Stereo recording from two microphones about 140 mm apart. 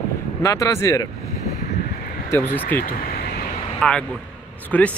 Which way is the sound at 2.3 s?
15° left (ahead or behind).